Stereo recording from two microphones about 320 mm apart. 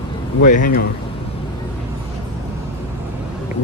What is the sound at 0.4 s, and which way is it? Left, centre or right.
Speech, left.